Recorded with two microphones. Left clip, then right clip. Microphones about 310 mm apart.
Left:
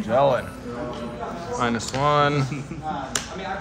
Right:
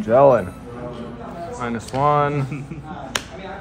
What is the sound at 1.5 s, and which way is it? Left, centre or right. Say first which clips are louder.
Speech: right 1 dB; centre.